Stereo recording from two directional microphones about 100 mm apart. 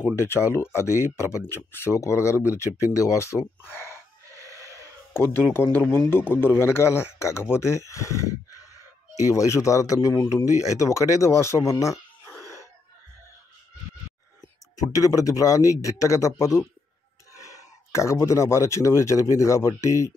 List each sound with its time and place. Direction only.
0.2 s a man's voice: 25° left (ahead or behind)
4.3 s gasp: 35° right (ahead or behind)
5.1 s a man's voice: 25° left (ahead or behind)
14.8 s speech: 35° left (ahead or behind)